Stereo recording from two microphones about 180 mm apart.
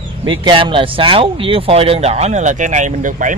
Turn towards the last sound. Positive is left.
turn(degrees=-45)  # may be behind; listen again after turning